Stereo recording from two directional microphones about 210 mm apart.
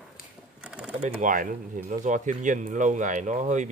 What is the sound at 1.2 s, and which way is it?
Speech, 40° right (ahead or behind).